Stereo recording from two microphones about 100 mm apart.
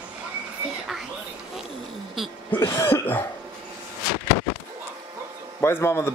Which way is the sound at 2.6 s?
30° left (ahead or behind).